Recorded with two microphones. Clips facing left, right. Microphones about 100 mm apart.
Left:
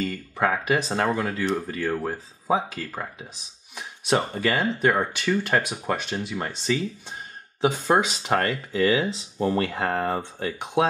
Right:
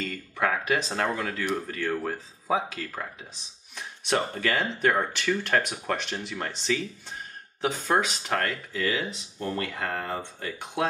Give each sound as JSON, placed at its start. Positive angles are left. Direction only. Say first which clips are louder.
{"t": 0.0, "sound": "speech", "louder": "left 3 dB", "side_deg": 10}
{"t": 7.6, "sound": "speech", "louder": "left 4 dB", "side_deg": 15}